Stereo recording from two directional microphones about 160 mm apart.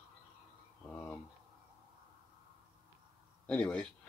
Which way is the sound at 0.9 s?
5° left (ahead or behind).